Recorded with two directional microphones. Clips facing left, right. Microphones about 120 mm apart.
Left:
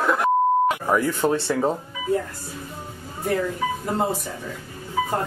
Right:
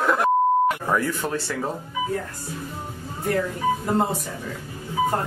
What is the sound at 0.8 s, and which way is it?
Speech, 15° left (ahead or behind).